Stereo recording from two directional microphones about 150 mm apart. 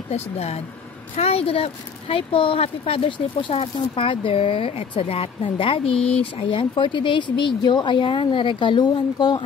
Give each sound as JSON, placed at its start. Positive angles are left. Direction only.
{"t": 0.1, "sound": "speech", "side_deg": 45}